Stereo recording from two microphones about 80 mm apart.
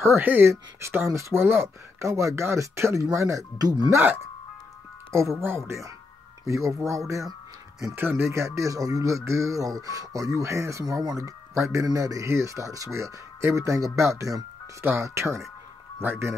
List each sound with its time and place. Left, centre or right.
0.0 s speech: right
0.5 s speech: right
3.5 s speech: right
5.1 s speech: right